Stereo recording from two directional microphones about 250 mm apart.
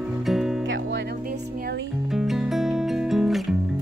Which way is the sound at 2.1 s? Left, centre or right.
Centre.